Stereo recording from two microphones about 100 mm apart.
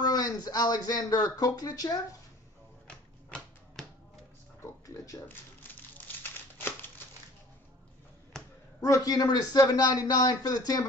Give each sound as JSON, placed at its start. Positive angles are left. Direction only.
{"t": 0.0, "sound": "a man's voice", "side_deg": 40}
{"t": 2.9, "sound": "typewriter", "side_deg": 10}
{"t": 5.1, "sound": "a man's voice", "side_deg": 35}
{"t": 5.6, "sound": "crumpling", "side_deg": 20}
{"t": 8.8, "sound": "a man's voice", "side_deg": 35}